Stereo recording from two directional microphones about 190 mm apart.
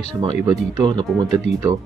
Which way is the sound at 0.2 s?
20° right (ahead or behind).